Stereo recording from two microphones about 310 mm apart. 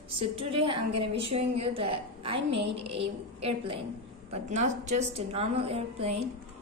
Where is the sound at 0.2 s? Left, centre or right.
Centre.